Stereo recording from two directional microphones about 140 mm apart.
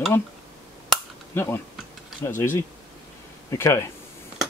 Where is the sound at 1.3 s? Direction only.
15° left (ahead or behind).